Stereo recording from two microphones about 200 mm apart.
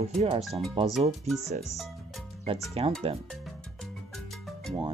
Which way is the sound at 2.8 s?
30° right (ahead or behind).